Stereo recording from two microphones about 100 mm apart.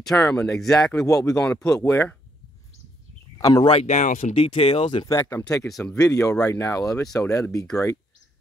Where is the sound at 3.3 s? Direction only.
40° left (ahead or behind).